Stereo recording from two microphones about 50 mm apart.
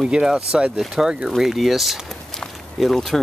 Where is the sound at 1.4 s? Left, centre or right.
Centre.